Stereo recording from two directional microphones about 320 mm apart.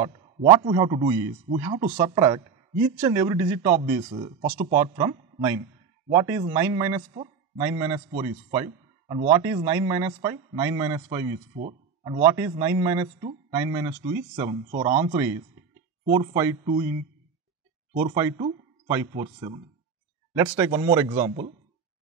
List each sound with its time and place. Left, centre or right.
0.0 s a man's voice: centre
18.1 s speech: centre
20.3 s a man's voice: centre